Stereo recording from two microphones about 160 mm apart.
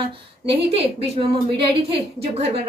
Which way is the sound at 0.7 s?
40° right (ahead or behind).